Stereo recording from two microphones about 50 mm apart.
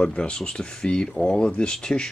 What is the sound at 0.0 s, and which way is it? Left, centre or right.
Speech, left.